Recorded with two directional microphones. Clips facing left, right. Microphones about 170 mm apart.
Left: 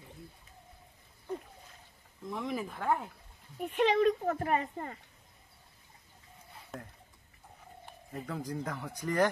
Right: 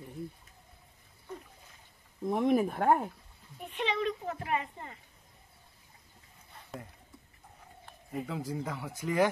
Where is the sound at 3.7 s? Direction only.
45° left (ahead or behind).